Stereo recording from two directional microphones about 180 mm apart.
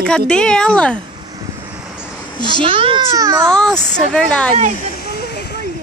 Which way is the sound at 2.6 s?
30° right (ahead or behind).